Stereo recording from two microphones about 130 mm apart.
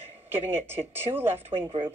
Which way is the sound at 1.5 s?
45° right (ahead or behind).